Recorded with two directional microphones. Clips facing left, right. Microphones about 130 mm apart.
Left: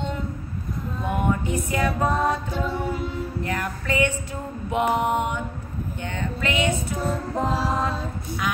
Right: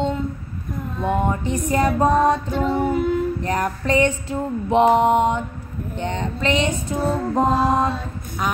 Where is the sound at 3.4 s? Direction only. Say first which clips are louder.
Right 5 dB; 35° right (ahead or behind).